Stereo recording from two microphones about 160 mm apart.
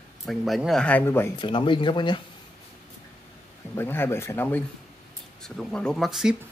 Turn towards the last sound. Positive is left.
turn(degrees=-5)  # may be behind; listen again after turning